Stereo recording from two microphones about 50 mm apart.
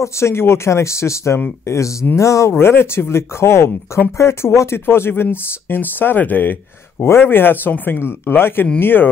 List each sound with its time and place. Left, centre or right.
0.0 s speech: left
1.7 s speech: left
2.5 s speech: left
7.1 s speech: left